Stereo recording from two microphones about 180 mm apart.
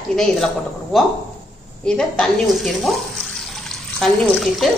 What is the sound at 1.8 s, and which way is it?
A woman's voice, 5° left (ahead or behind).